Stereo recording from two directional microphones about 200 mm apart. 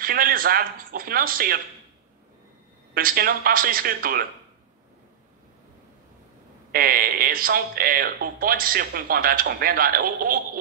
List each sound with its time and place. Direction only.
0.0 s speech: 45° right (ahead or behind)
2.9 s speech: 45° right (ahead or behind)
6.7 s speech: 45° right (ahead or behind)